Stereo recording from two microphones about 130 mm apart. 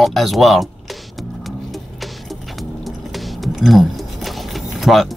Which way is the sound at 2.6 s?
Centre (ahead or behind).